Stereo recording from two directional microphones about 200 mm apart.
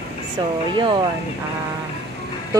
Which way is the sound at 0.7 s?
25° right (ahead or behind).